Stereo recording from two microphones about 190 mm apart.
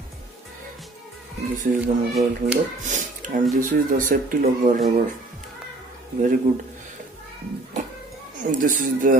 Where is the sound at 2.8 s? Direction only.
40° right (ahead or behind).